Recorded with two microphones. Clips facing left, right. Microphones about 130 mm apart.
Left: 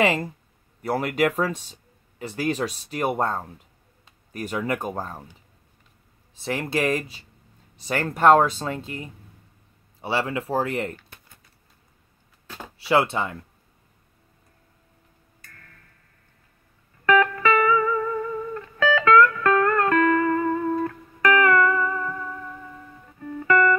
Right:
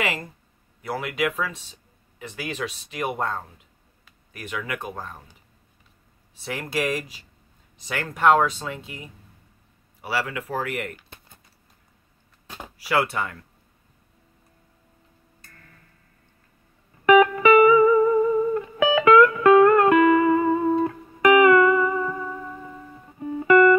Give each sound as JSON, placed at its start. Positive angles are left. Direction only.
{"t": 0.0, "sound": "speech", "side_deg": 30}
{"t": 6.4, "sound": "speech", "side_deg": 30}
{"t": 10.0, "sound": "speech", "side_deg": 25}
{"t": 12.7, "sound": "speech", "side_deg": 25}
{"t": 17.0, "sound": "music", "side_deg": -15}